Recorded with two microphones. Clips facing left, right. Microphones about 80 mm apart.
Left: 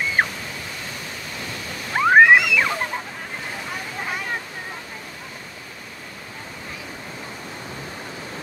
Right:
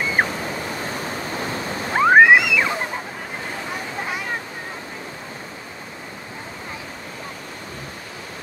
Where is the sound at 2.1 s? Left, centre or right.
Centre.